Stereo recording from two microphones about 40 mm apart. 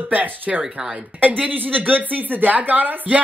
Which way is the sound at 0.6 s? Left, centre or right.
Centre.